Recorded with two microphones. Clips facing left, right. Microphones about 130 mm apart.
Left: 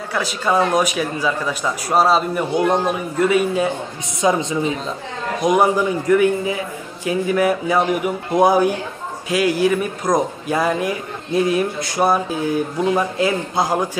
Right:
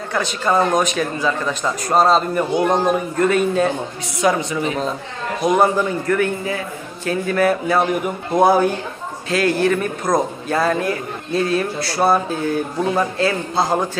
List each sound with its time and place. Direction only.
0.1 s a man's voice: 5° left (ahead or behind)
4.2 s a woman's voice: 20° left (ahead or behind)